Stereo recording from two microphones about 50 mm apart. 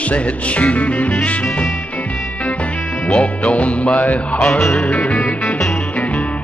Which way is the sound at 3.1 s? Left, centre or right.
Left.